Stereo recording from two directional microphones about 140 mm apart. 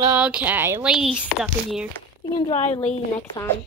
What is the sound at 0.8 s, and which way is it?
Speech, 5° right (ahead or behind).